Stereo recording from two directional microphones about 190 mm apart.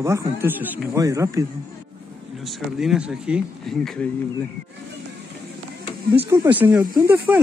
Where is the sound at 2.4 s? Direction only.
Centre (ahead or behind).